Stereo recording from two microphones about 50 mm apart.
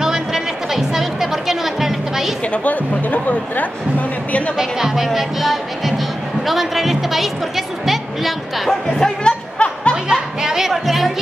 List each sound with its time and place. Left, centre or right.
0.0 s music: centre
2.5 s speech: left
4.6 s a woman's voice: centre
9.2 s music: left
10.4 s music: centre